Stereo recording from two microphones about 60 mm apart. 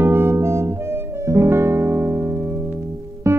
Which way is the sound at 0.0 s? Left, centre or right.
Right.